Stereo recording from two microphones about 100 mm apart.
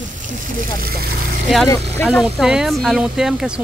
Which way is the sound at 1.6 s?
30° left (ahead or behind).